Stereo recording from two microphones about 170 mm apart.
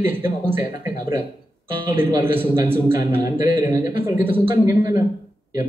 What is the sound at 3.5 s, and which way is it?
Speech, 15° right (ahead or behind).